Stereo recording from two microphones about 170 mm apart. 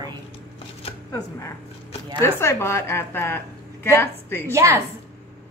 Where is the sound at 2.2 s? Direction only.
15° left (ahead or behind).